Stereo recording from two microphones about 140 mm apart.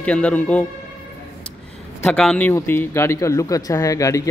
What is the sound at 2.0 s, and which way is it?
Speech, 5° left (ahead or behind).